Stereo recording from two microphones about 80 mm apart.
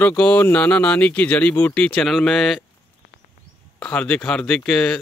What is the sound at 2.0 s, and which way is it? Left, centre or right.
Speech, centre.